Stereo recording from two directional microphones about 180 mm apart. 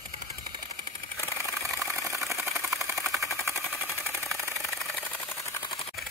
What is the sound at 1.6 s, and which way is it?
Engine, 15° right (ahead or behind).